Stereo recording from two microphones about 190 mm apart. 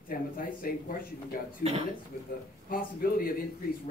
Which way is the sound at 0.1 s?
50° left (ahead or behind).